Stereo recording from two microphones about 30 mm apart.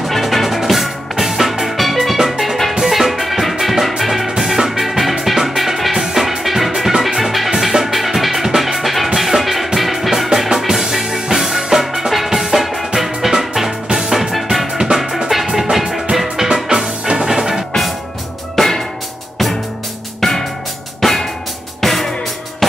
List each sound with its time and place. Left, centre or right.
0.2 s music: centre
14.3 s music: centre
14.7 s music: right
15.0 s music: centre
16.3 s music: centre
17.2 s music: centre
18.6 s music: centre
20.2 s music: centre
21.0 s drum: centre
21.8 s music: centre